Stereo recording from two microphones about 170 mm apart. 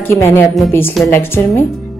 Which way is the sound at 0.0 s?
15° left (ahead or behind).